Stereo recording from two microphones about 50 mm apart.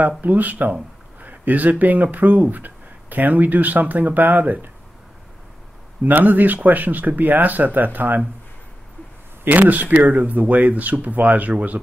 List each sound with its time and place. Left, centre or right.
0.2 s speech: right
6.0 s speech: right
9.4 s speech: right